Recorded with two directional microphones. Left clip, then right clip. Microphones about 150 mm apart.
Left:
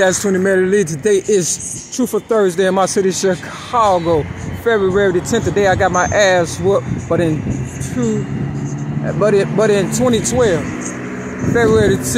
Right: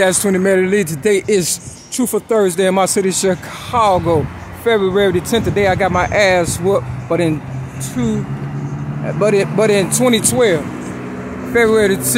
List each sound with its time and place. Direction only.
0.0 s speech: 25° right (ahead or behind)